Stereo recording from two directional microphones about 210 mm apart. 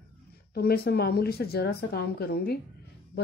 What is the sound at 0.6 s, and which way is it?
Speech, 50° left (ahead or behind).